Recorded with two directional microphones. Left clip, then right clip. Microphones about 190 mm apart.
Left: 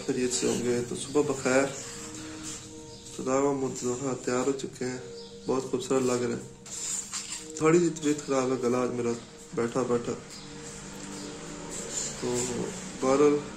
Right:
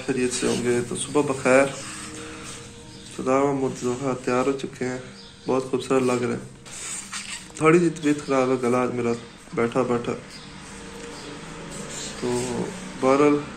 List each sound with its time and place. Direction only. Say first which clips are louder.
0.0 s speech: right 4 dB; 5° right (ahead or behind)
3.3 s speech: right 5 dB; 15° right (ahead or behind)
13.0 s speech: right 4 dB; 15° right (ahead or behind)